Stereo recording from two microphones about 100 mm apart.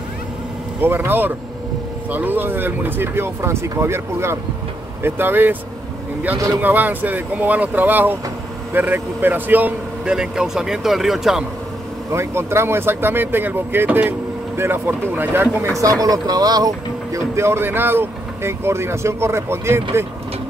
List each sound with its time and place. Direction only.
0.7 s speech: 20° right (ahead or behind)
6.6 s speech: 15° right (ahead or behind)
12.1 s speech: 25° right (ahead or behind)
15.6 s speech: 35° right (ahead or behind)